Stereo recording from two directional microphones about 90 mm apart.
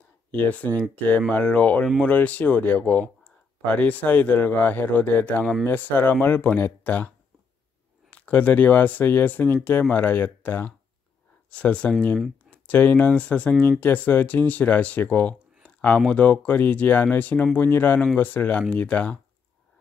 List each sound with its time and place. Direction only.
0.3 s speech: 15° left (ahead or behind)
8.1 s speech: 20° left (ahead or behind)
15.6 s a sound: 15° left (ahead or behind)
16.1 s speech: 15° left (ahead or behind)